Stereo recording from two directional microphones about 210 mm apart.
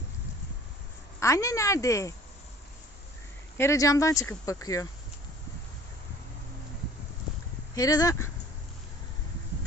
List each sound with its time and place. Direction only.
1.2 s speech: 15° left (ahead or behind)
3.5 s speech: 15° left (ahead or behind)
7.7 s speech: 15° left (ahead or behind)